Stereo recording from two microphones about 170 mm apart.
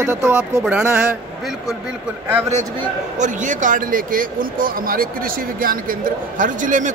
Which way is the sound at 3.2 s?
50° right (ahead or behind).